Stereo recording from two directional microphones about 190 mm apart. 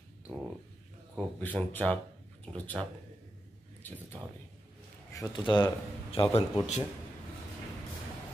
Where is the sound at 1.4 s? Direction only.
10° left (ahead or behind).